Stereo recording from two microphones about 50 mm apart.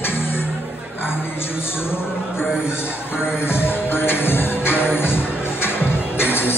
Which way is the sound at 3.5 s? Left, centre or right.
Left.